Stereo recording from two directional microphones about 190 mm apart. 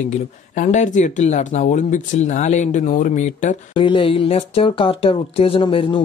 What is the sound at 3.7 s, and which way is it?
Speech, 25° left (ahead or behind).